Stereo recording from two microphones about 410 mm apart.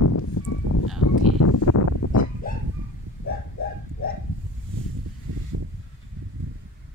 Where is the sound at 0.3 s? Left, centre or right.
Left.